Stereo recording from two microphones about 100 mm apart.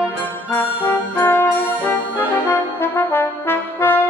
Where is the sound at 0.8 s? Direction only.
20° left (ahead or behind).